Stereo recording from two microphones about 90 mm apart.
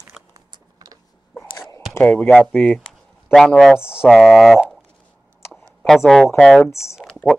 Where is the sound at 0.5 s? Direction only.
45° right (ahead or behind).